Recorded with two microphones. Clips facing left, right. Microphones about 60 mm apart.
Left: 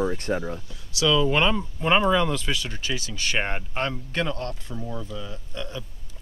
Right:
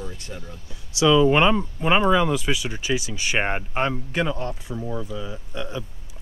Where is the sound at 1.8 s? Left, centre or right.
Centre.